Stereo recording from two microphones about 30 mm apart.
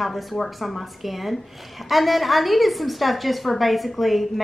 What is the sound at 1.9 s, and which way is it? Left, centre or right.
A woman's voice, centre.